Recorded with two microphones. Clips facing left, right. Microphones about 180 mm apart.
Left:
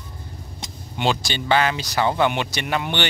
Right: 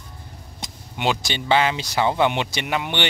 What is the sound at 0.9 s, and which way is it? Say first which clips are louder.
Speech: left 1 dB; 10° right (ahead or behind).